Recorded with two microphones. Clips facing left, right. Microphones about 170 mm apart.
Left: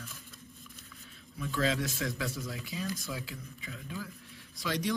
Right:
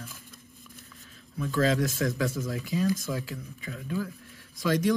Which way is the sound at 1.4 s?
45° right (ahead or behind).